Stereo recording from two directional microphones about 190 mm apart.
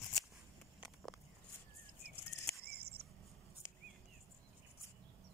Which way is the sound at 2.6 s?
55° right (ahead or behind).